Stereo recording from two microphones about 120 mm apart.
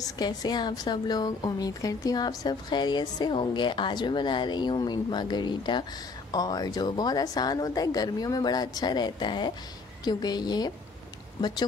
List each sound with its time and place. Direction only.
0.0 s a woman's voice: 30° left (ahead or behind)